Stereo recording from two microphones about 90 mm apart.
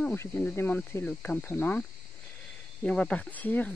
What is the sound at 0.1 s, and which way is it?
Speech, 25° left (ahead or behind).